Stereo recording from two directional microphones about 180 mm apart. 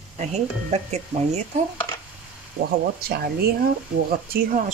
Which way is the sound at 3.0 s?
60° right (ahead or behind).